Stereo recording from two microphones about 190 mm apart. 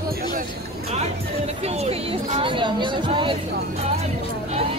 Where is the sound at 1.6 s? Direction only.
35° right (ahead or behind).